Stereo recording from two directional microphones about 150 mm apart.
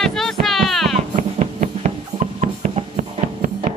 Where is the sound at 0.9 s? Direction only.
50° right (ahead or behind).